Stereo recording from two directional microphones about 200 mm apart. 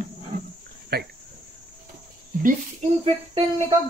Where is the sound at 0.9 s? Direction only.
50° right (ahead or behind).